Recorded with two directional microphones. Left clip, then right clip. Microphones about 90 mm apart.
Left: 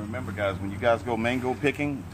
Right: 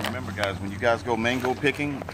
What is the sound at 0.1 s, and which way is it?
Speech, 15° right (ahead or behind).